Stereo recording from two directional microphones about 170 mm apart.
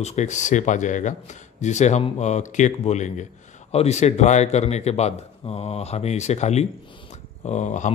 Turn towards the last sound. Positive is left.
turn(degrees=45)  # may be behind; listen again after turning